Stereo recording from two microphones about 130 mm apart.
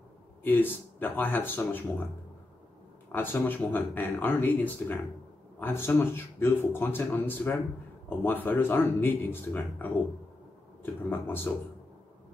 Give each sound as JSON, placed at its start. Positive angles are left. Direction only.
{"t": 0.4, "sound": "speech", "side_deg": 15}
{"t": 3.1, "sound": "speech", "side_deg": 15}